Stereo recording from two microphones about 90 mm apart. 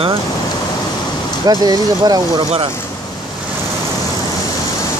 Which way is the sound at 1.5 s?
45° right (ahead or behind).